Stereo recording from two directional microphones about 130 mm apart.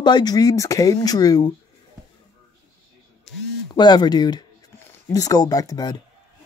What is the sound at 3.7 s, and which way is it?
A child's voice, 35° left (ahead or behind).